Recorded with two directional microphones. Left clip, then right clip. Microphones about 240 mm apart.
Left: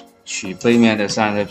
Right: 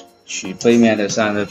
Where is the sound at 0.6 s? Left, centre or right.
Left.